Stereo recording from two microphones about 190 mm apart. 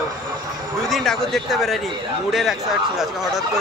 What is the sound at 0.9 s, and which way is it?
Speech, centre (ahead or behind).